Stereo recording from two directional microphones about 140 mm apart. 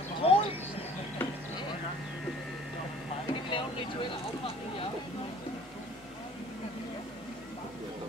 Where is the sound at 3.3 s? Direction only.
35° left (ahead or behind).